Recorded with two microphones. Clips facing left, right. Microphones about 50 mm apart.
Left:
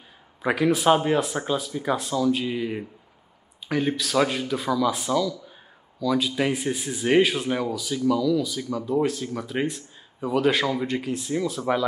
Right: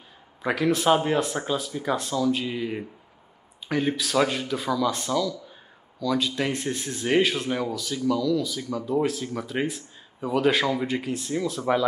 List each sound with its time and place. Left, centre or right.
0.4 s speech: centre